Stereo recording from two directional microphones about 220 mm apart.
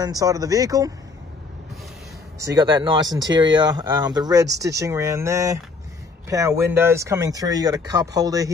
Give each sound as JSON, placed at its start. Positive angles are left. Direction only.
{"t": 0.0, "sound": "speech", "side_deg": -15}
{"t": 2.5, "sound": "speech", "side_deg": -20}